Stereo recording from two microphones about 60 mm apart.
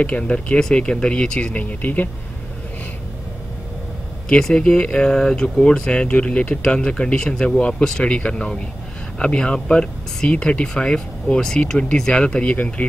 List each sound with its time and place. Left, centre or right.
0.0 s speech: centre
4.3 s speech: centre